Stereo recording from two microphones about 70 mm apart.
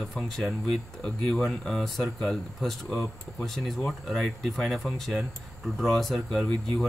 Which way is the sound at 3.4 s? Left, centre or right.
Centre.